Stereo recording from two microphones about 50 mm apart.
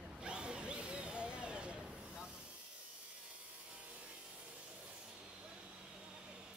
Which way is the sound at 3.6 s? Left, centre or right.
Right.